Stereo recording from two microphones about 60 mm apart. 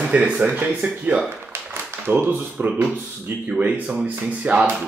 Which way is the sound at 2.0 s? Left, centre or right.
Right.